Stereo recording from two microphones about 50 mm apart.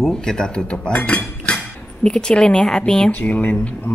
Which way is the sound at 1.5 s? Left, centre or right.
Centre.